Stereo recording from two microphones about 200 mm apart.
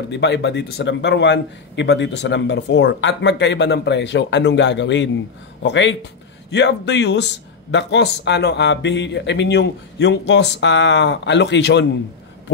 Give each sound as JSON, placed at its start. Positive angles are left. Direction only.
{"t": 0.1, "sound": "speech", "side_deg": 60}